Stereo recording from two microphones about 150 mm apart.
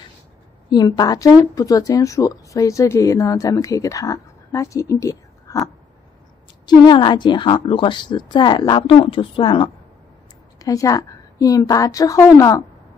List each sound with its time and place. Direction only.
0.7 s a woman's voice: 30° left (ahead or behind)